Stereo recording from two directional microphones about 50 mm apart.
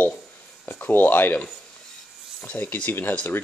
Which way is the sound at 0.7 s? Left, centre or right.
Left.